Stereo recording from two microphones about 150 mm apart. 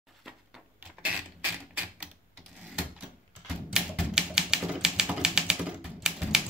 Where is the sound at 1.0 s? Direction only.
10° right (ahead or behind).